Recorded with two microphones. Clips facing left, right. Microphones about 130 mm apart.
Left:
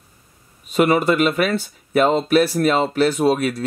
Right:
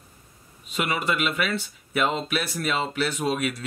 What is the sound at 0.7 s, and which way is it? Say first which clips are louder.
Speech: left 10 dB; 45° left (ahead or behind).